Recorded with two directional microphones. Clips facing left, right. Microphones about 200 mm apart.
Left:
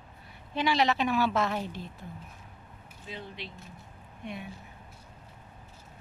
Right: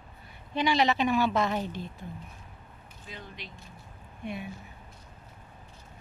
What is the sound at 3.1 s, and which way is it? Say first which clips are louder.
Speech: left 3 dB; 30° left (ahead or behind).